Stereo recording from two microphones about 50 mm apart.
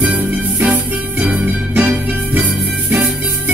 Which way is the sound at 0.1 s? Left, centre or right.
Right.